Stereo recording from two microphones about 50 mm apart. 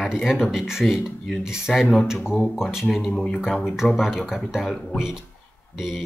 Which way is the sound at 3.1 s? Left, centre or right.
Centre.